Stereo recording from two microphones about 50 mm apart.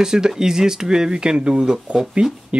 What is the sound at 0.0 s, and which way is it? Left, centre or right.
Speech, centre.